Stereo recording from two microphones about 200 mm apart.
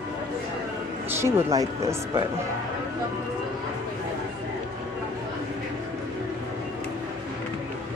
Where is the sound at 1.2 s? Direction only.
15° right (ahead or behind).